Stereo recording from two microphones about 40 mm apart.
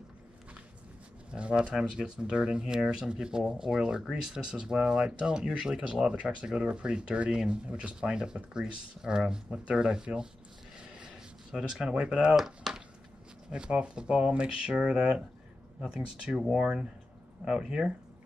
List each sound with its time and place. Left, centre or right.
1.3 s speech: right
11.5 s speech: centre
12.4 s a sound: centre
13.5 s speech: right